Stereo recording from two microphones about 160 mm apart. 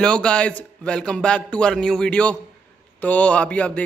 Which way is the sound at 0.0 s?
5° left (ahead or behind).